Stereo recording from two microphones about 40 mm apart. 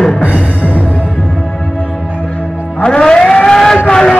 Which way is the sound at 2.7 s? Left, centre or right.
Left.